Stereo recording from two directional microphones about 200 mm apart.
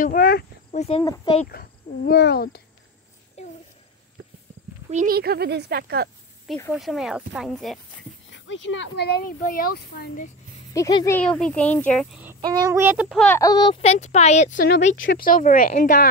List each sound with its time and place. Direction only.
0.0 s speech: 45° left (ahead or behind)
0.7 s speech: 30° left (ahead or behind)
1.0 s speech: 15° left (ahead or behind)
1.5 s speech: 50° left (ahead or behind)
4.8 s speech: 35° right (ahead or behind)
5.1 s speech: 50° right (ahead or behind)
6.7 s speech: centre (ahead or behind)
8.3 s speech: 65° left (ahead or behind); by 10.3 s 45° left (ahead or behind)
10.7 s speech: 15° left (ahead or behind)
11.1 s speech: 5° left (ahead or behind)
12.4 s speech: 20° right (ahead or behind); by 13.4 s centre (ahead or behind)
13.4 s speech: 20° left (ahead or behind); by 16.1 s 45° left (ahead or behind)